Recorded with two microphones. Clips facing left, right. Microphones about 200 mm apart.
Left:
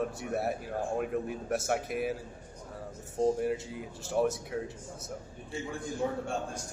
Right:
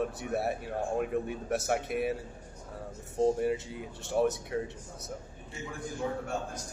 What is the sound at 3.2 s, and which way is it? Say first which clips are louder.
Speech: right 1 dB; centre (ahead or behind).